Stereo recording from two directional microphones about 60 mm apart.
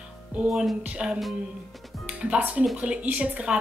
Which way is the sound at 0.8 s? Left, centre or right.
Centre.